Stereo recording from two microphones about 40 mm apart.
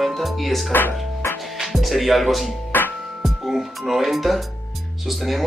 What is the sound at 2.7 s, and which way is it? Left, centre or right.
Music, left.